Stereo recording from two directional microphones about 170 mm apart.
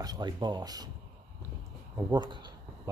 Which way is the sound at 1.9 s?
25° right (ahead or behind).